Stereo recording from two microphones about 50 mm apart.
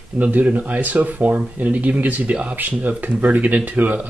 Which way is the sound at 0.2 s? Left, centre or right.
Right.